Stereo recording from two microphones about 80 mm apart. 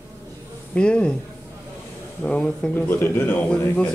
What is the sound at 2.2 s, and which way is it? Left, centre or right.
Speech, centre.